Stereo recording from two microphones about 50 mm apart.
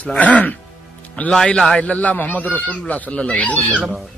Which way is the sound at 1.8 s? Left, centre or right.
Left.